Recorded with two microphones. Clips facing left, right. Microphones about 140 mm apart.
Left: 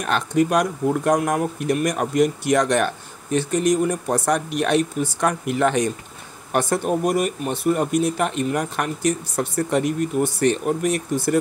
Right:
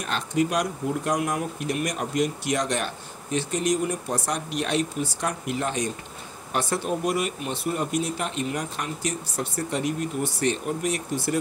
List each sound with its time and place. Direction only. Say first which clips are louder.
0.0 s speech: left 5 dB; 55° left (ahead or behind)
6.5 s speech: left 6 dB; 50° left (ahead or behind)